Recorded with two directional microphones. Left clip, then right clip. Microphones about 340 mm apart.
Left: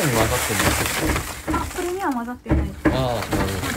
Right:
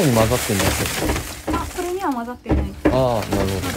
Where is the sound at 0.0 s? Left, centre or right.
Centre.